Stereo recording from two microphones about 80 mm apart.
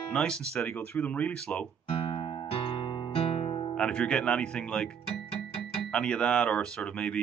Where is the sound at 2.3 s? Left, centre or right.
Left.